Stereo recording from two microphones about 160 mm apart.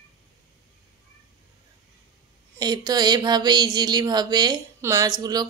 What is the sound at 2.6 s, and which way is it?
Speech, 25° right (ahead or behind).